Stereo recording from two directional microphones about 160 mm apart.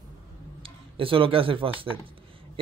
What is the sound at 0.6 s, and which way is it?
Speech, 35° right (ahead or behind).